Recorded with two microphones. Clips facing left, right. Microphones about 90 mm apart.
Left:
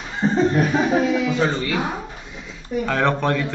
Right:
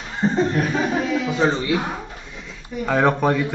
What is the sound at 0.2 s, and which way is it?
Laughter, centre (ahead or behind).